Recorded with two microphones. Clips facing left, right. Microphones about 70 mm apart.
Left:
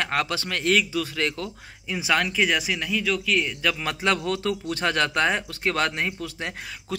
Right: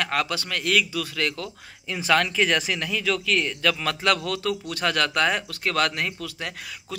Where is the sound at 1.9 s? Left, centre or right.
Centre.